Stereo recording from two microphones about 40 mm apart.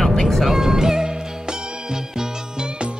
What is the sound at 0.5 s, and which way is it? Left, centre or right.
Music, centre.